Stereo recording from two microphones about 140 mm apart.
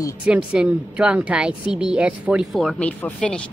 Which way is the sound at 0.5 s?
5° right (ahead or behind).